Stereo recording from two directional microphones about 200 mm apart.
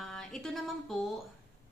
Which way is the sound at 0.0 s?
5° left (ahead or behind).